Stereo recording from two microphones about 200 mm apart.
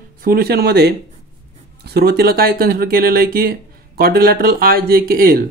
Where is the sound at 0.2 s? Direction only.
50° right (ahead or behind).